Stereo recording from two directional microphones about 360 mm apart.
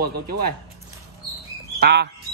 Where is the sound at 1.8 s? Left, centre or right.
Right.